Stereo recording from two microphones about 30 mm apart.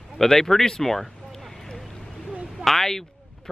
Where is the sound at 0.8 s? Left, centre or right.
Centre.